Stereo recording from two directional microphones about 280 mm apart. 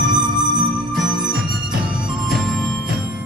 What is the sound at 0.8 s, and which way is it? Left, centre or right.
Music, centre.